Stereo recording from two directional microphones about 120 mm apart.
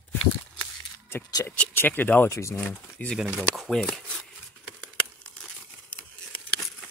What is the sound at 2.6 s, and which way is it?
Speech, 10° left (ahead or behind).